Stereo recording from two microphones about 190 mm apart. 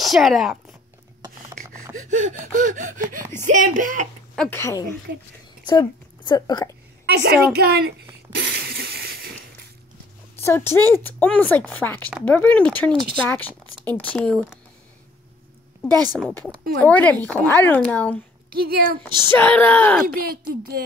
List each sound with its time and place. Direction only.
0.0 s speech: centre (ahead or behind)
2.0 s gasp: 40° right (ahead or behind)
3.4 s speech: 45° right (ahead or behind)
4.4 s speech: 10° left (ahead or behind)
7.1 s a woman's voice: 55° right (ahead or behind)
8.4 s a sound: 60° right (ahead or behind)
10.4 s speech: 15° left (ahead or behind)
16.1 s speech: 5° left (ahead or behind)
18.5 s speech: 55° right (ahead or behind)
19.3 s speech: 10° left (ahead or behind)
20.2 s speech: 50° right (ahead or behind)